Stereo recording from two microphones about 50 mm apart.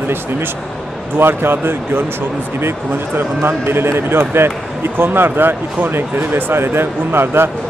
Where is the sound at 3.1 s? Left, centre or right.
Right.